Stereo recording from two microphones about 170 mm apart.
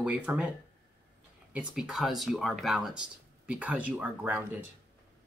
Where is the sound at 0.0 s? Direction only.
5° right (ahead or behind).